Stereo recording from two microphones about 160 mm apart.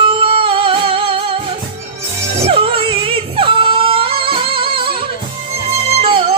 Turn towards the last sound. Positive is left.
turn(degrees=-35)  # may be behind; listen again after turning